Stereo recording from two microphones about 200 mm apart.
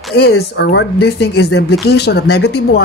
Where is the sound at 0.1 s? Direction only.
55° left (ahead or behind).